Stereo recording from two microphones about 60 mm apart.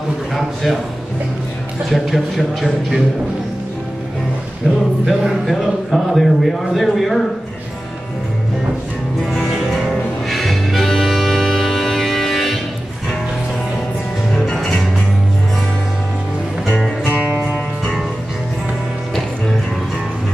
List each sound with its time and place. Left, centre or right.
1.9 s a man's voice: centre
4.6 s a sound: centre
5.0 s a man's voice: centre
10.3 s music: centre
14.3 s music: centre